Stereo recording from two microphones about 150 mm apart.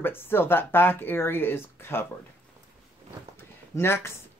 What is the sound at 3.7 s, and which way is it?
Speech, 15° left (ahead or behind).